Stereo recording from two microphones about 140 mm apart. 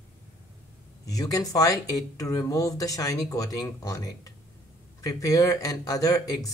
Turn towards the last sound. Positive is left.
turn(degrees=25)  # may be behind; listen again after turning